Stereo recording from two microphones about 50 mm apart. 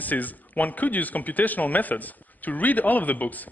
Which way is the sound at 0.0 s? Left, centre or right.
Left.